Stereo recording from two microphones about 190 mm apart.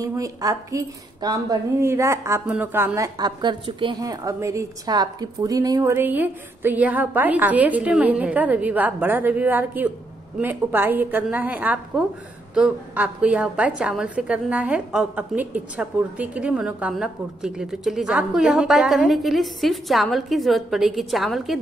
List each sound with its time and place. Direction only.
0.0 s a woman's voice: 15° right (ahead or behind); by 21.5 s centre (ahead or behind)